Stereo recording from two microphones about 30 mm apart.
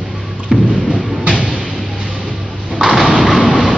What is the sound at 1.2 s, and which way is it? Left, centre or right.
Thump, right.